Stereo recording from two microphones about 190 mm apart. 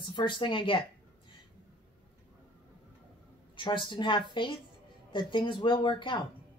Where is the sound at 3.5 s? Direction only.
25° left (ahead or behind).